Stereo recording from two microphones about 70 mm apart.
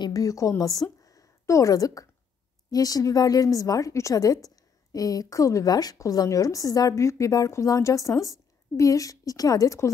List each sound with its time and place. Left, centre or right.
0.0 s a woman's voice: left
1.0 s a sound: left
2.7 s a woman's voice: left
7.0 s a woman's voice: left